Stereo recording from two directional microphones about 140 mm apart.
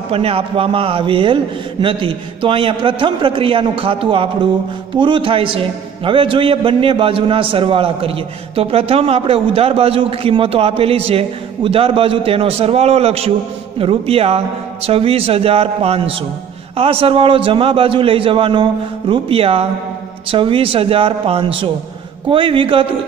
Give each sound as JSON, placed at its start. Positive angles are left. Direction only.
{"t": 0.1, "sound": "a man's voice", "side_deg": -45}